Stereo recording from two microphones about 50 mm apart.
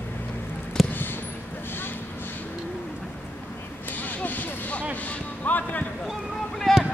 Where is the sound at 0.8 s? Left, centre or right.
Centre.